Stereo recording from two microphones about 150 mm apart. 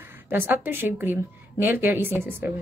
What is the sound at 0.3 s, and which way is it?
A woman's voice, 15° right (ahead or behind).